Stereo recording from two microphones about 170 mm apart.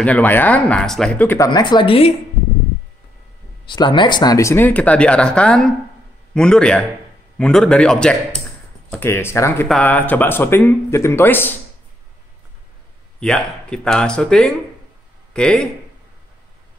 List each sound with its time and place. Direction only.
0.0 s speech: 10° left (ahead or behind)
1.5 s speech: 25° left (ahead or behind)
3.6 s speech: 25° left (ahead or behind)
13.2 s speech: 5° left (ahead or behind)